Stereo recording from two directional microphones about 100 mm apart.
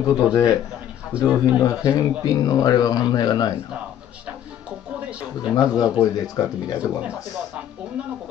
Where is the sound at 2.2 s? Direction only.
40° left (ahead or behind).